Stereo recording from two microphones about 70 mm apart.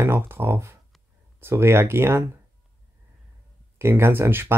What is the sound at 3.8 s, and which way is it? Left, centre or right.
Speech, right.